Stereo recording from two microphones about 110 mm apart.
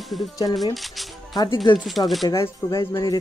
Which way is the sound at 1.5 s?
45° left (ahead or behind).